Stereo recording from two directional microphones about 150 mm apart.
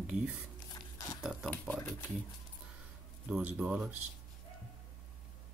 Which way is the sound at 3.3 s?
10° right (ahead or behind).